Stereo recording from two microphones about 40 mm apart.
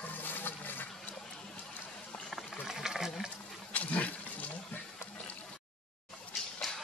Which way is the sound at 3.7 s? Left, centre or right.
Left.